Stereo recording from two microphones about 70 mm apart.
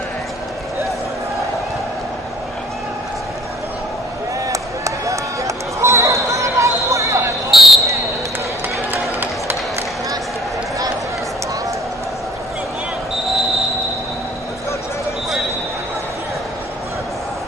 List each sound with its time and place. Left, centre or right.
4.5 s a sound: right
7.5 s basketball bounce: centre
8.9 s run: right